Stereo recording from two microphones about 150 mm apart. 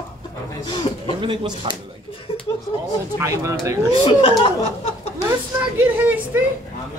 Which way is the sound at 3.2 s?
20° right (ahead or behind).